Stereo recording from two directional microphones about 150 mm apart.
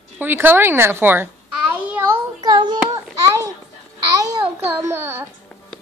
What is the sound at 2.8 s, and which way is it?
Child singing, 25° right (ahead or behind).